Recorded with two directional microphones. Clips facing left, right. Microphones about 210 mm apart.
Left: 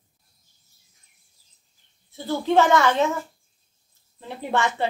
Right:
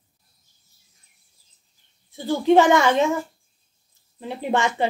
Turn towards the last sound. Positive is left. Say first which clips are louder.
# right 2 dB
turn(degrees=-15)  # may be behind; listen again after turning